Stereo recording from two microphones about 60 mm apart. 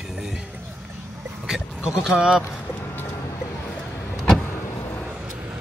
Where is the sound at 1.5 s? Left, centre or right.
Centre.